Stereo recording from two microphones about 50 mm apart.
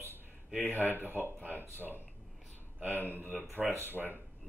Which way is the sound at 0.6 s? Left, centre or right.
Left.